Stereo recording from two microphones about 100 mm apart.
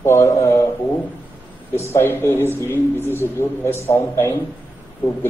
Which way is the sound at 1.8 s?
25° left (ahead or behind).